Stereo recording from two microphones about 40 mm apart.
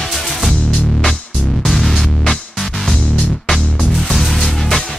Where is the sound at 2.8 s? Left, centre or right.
Centre.